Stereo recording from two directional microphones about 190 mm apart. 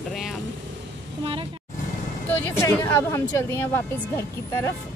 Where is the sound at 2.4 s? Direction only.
15° left (ahead or behind).